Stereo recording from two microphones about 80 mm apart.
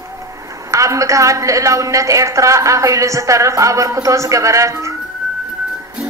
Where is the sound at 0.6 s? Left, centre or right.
Right.